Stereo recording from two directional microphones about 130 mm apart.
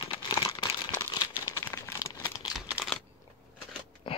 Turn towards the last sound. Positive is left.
turn(degrees=40)  # may be behind; listen again after turning